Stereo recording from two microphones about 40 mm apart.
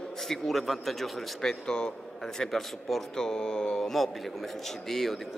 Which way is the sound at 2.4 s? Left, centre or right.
Centre.